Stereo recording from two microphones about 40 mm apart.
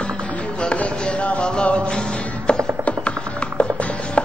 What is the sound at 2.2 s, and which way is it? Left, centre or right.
Music, left.